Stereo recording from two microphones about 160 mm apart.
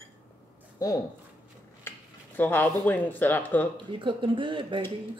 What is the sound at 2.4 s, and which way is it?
Speech, 10° left (ahead or behind).